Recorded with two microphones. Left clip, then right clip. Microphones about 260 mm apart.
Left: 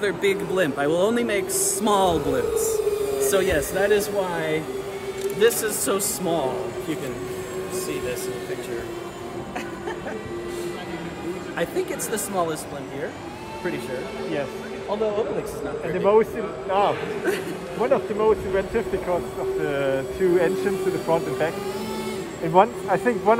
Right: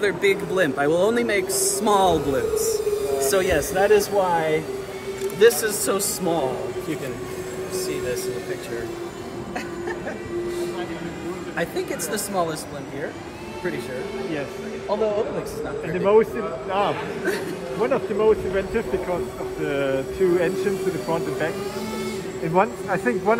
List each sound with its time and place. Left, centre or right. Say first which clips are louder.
0.0 s speech: right 2 dB; centre
11.5 s speech: even; centre
16.0 s speech: right 1 dB; left
17.8 s speech: even; left
22.5 s speech: left 3 dB; left